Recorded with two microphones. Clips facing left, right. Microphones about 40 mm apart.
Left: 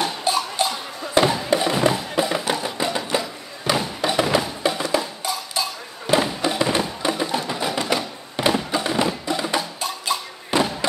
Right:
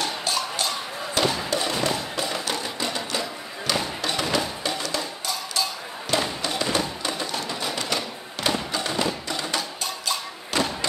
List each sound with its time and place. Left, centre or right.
0.0 s music: left
3.7 s thump: centre
4.0 s music: centre